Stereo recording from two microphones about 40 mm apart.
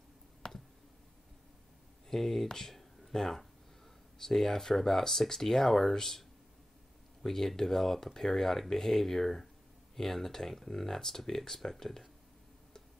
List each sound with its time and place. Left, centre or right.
0.4 s a sound: centre
2.0 s speech: centre
7.2 s speech: centre